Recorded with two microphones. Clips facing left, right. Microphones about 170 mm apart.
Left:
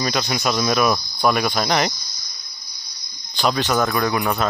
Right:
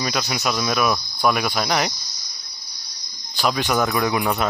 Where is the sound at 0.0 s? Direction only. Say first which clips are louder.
Left 2 dB; 5° right (ahead or behind).